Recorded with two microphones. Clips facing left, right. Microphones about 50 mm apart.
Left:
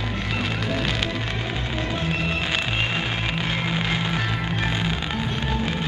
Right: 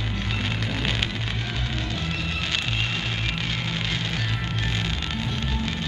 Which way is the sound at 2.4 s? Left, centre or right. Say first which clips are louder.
Left 3 dB; centre.